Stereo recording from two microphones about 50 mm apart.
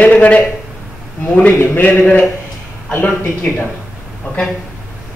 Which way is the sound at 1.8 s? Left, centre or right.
Left.